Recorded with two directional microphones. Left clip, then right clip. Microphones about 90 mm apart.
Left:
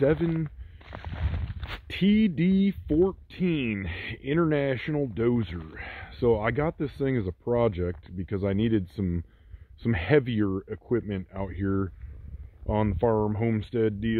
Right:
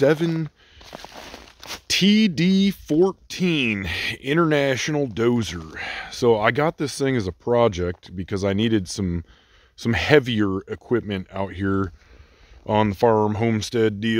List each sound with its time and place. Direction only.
0.0 s speech: 25° right (ahead or behind)
1.0 s walk: 30° right (ahead or behind)
1.4 s a sound: 5° right (ahead or behind)
1.9 s speech: 40° right (ahead or behind)
12.6 s speech: 65° right (ahead or behind); by 14.1 s 45° right (ahead or behind)